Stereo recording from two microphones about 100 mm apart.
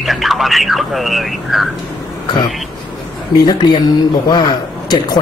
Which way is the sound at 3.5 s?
45° left (ahead or behind).